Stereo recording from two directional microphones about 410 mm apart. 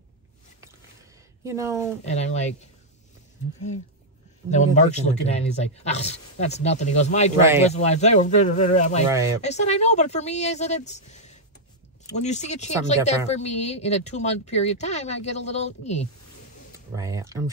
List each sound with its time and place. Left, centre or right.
1.4 s speech: centre
2.0 s a man's voice: centre
4.5 s a man's voice: centre
9.1 s speech: centre
9.4 s a man's voice: centre
16.9 s speech: centre